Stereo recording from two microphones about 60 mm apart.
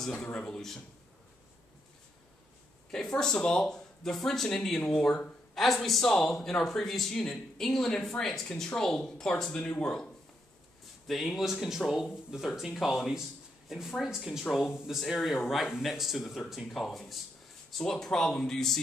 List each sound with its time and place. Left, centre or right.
0.0 s speech: centre
2.9 s speech: centre
11.1 s speech: centre